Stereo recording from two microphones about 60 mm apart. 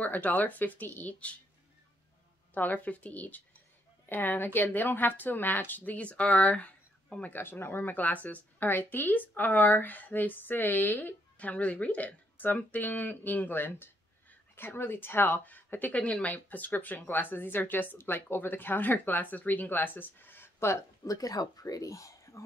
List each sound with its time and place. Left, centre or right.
0.0 s speech: left
2.5 s speech: left
5.9 s speech: left
7.3 s speech: left
21.1 s speech: left